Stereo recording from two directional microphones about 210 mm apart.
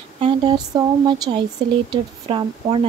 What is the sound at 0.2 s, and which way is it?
Speech, 20° right (ahead or behind).